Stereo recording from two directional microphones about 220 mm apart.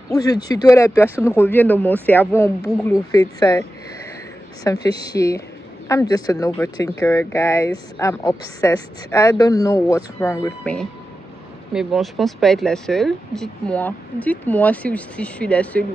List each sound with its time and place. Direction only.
0.1 s a woman's voice: 15° left (ahead or behind)
4.8 s a woman's voice: 15° left (ahead or behind)